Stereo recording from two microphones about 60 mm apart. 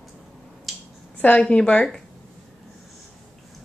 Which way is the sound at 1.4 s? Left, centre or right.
Centre.